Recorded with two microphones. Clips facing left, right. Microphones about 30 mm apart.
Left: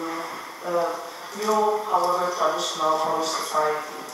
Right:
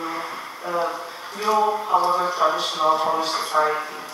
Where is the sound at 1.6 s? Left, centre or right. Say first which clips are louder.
Even; centre.